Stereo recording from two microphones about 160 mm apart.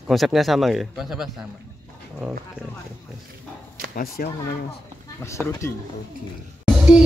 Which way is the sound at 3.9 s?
65° left (ahead or behind).